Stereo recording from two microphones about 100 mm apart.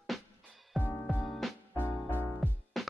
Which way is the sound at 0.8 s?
15° left (ahead or behind).